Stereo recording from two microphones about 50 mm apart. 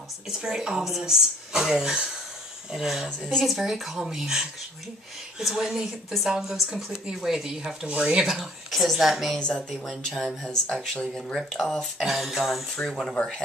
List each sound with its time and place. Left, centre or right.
0.4 s speech: centre
3.1 s speech: centre
3.4 s a woman's voice: centre
8.3 s a woman's voice: centre
10.8 s speech: centre
12.0 s a woman's voice: centre
12.7 s speech: centre